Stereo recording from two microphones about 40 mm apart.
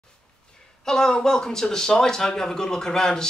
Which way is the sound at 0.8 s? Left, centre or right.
Centre.